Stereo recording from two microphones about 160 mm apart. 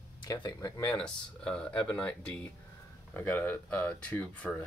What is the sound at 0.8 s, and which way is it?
Speech, 5° left (ahead or behind).